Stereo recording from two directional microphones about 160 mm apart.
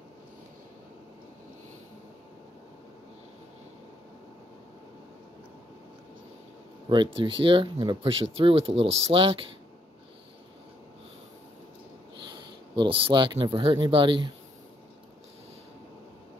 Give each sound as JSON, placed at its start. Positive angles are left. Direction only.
{"t": 6.9, "sound": "speech", "side_deg": -30}
{"t": 12.7, "sound": "speech", "side_deg": -30}